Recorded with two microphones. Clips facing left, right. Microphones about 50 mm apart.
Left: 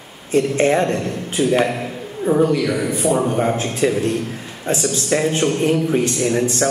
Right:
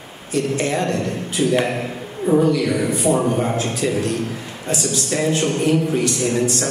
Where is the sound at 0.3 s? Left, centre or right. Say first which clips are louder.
Left 5 dB; left.